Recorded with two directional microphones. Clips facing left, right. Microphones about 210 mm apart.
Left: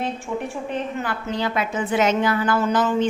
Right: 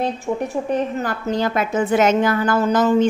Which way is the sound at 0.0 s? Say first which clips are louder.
Right 4 dB; 40° right (ahead or behind).